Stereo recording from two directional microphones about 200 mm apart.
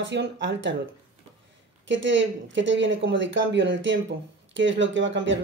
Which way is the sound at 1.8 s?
65° right (ahead or behind).